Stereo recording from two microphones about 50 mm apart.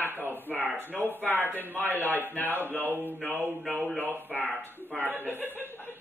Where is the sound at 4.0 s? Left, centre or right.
Right.